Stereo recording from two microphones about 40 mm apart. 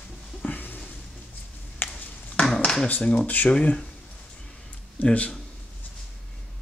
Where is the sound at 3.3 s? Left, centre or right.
Left.